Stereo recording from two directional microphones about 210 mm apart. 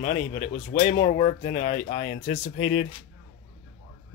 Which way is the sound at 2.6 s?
75° left (ahead or behind).